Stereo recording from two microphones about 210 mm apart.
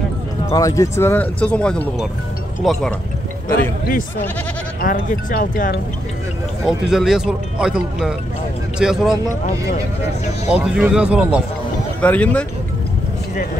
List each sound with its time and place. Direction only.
0.5 s speech: 15° left (ahead or behind); by 2.9 s centre (ahead or behind)
4.8 s speech: 40° left (ahead or behind)
6.6 s speech: centre (ahead or behind)
10.5 s speech: 5° right (ahead or behind)
12.0 s speech: 5° left (ahead or behind)